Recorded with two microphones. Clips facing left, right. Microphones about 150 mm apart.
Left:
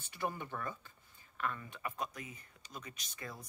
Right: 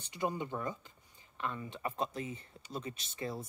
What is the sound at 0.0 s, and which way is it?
Speech, 20° right (ahead or behind).